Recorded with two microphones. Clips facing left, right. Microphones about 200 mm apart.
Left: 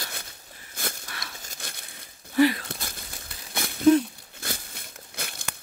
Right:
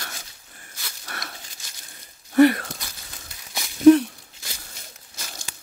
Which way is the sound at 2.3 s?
60° right (ahead or behind).